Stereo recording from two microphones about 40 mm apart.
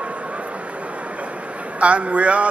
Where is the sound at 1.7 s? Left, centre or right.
Right.